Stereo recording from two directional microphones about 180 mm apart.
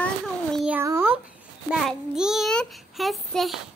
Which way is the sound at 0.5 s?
5° right (ahead or behind).